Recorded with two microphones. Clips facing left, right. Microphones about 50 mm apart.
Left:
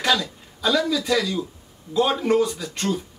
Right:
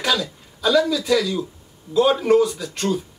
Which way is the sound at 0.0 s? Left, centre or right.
Centre.